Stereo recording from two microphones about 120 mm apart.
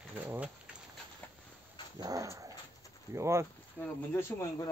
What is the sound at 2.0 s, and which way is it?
Dog, 30° right (ahead or behind).